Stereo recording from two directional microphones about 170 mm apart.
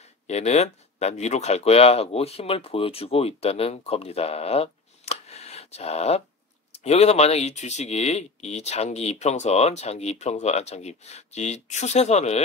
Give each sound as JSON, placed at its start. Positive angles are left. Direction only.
{"t": 0.3, "sound": "speech", "side_deg": 40}